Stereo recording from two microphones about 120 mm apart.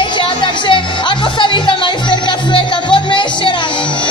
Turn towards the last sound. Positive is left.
turn(degrees=45)  # may be behind; listen again after turning